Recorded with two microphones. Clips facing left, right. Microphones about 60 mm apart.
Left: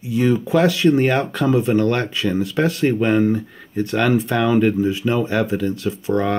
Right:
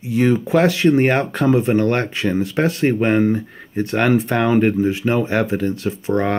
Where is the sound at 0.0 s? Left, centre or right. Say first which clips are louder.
Right 1 dB; right.